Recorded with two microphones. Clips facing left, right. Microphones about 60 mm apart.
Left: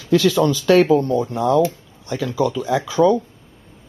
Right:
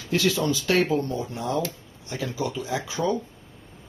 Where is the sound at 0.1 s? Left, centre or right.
Left.